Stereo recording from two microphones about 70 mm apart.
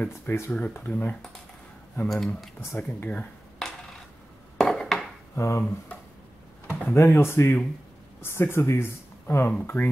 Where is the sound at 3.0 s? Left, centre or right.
Left.